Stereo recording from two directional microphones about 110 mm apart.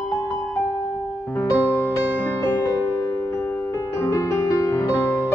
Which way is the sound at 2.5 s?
30° left (ahead or behind).